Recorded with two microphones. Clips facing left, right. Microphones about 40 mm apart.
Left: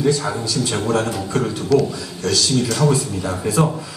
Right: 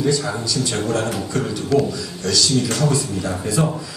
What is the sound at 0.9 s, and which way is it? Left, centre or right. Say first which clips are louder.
Speech: left 2 dB; left.